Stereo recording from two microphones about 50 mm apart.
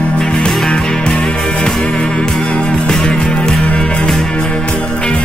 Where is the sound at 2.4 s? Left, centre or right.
Centre.